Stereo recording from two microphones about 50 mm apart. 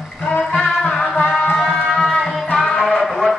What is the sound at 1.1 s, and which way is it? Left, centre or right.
Music, left.